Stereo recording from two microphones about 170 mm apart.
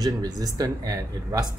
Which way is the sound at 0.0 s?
20° right (ahead or behind).